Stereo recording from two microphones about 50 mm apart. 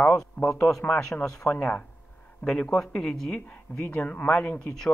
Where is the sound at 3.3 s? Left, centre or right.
Left.